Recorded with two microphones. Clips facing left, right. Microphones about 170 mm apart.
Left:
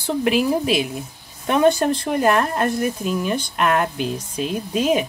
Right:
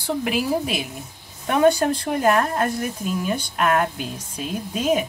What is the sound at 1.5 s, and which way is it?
Speech, 10° right (ahead or behind).